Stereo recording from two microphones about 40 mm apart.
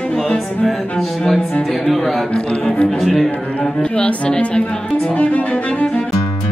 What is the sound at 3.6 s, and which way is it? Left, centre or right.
Music, left.